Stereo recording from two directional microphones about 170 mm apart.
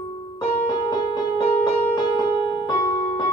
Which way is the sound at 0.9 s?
25° left (ahead or behind).